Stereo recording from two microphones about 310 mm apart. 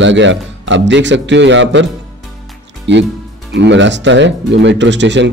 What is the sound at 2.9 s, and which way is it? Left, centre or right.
Speech, right.